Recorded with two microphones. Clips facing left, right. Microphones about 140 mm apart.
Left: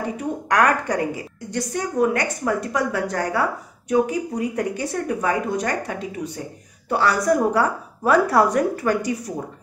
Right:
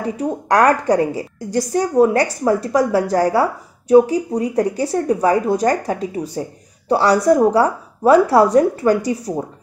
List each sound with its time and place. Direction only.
0.0 s a woman's voice: 30° right (ahead or behind)